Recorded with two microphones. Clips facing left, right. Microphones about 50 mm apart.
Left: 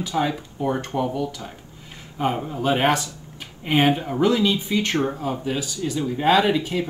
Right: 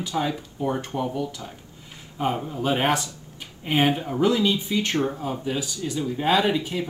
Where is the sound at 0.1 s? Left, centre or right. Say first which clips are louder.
Left 3 dB; centre.